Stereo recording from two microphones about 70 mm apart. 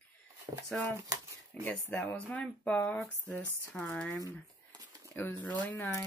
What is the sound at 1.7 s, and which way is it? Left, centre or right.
Speech, centre.